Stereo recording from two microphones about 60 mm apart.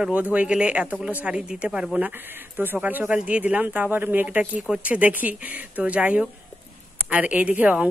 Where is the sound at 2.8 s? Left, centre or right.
Right.